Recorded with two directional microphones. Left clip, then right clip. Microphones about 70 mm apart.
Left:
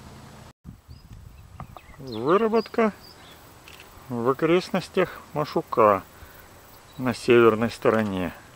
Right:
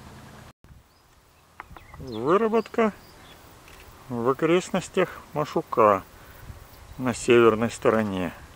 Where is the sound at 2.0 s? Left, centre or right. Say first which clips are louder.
Left 1 dB; left.